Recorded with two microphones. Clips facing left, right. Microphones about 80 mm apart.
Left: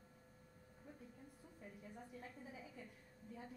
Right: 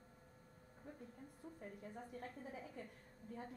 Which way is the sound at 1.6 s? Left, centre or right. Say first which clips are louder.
Right 2 dB; right.